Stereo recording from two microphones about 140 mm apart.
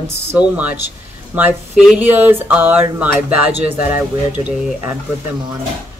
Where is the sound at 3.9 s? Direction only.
15° right (ahead or behind).